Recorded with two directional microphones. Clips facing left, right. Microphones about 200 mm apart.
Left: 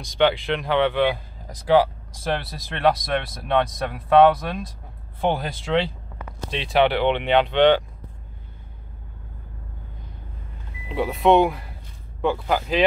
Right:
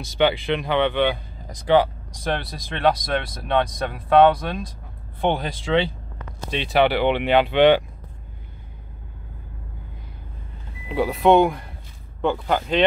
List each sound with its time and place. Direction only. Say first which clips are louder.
0.0 s speech: even; 5° right (ahead or behind)
10.9 s speech: right 1 dB; centre (ahead or behind)